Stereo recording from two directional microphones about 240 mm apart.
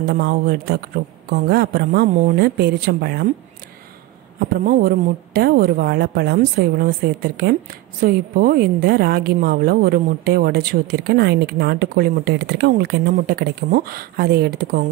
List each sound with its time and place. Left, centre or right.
0.0 s a woman's voice: right
4.6 s a woman's voice: right